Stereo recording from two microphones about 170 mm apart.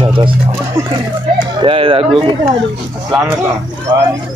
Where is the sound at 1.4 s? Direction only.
30° right (ahead or behind).